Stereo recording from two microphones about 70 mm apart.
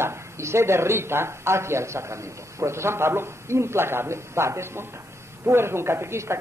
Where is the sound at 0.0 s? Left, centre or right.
Right.